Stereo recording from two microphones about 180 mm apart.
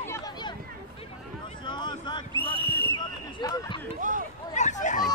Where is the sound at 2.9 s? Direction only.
20° left (ahead or behind).